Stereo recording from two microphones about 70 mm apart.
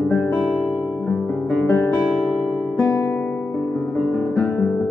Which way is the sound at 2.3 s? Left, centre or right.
Centre.